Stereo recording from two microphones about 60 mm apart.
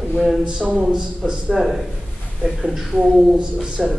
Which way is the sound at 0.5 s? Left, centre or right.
Centre.